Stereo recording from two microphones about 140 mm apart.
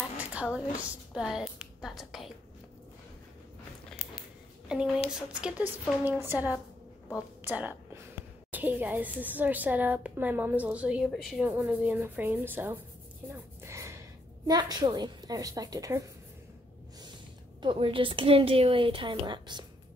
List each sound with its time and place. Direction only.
0.2 s a woman's voice: 10° right (ahead or behind)
4.6 s a woman's voice: 5° right (ahead or behind)
11.4 s a woman's voice: 10° right (ahead or behind)
13.3 s a sound: 20° right (ahead or behind)
14.5 s a woman's voice: 30° right (ahead or behind)
17.6 s a woman's voice: 40° right (ahead or behind)